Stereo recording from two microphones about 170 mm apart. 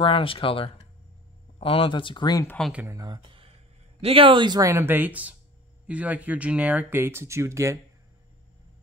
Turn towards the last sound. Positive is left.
turn(degrees=-15)  # may be behind; listen again after turning